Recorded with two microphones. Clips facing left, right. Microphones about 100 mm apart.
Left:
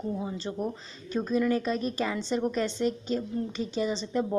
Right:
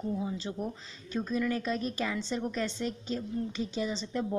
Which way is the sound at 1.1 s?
10° left (ahead or behind).